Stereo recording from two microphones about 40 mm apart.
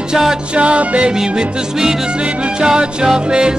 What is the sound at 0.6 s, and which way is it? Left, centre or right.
Music, right.